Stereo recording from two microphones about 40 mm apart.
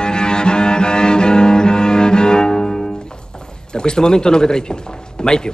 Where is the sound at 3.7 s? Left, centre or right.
Centre.